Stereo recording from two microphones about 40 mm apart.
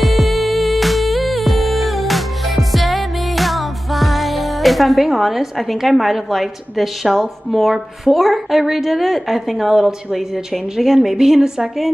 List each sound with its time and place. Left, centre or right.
0.0 s music: centre
11.1 s a woman's voice: centre